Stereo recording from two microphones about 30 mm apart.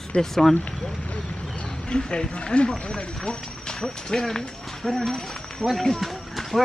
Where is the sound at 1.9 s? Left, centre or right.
Left.